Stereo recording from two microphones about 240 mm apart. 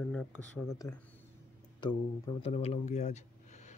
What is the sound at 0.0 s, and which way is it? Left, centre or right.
Speech, centre.